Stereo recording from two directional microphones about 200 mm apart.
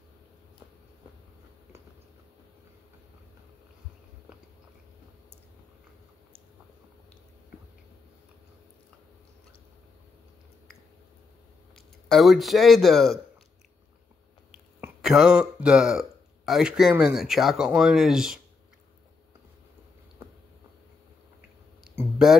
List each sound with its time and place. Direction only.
12.1 s speech: centre (ahead or behind)
14.5 s speech: 5° right (ahead or behind)
21.8 s a sound: centre (ahead or behind)